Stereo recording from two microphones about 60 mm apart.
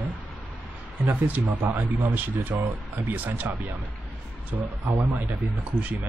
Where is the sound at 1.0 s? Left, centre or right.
Right.